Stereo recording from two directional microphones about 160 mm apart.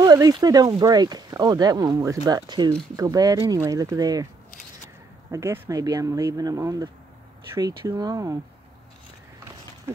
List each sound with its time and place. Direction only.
0.0 s speech: 25° right (ahead or behind)
5.3 s speech: 15° right (ahead or behind)